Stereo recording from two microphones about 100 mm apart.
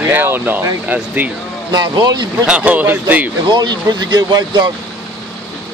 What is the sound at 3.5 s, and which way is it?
Speech, 45° right (ahead or behind).